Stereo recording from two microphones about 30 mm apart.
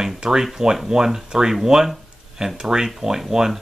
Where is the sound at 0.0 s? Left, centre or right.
Right.